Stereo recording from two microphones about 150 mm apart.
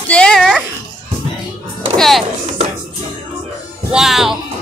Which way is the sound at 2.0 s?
Centre (ahead or behind).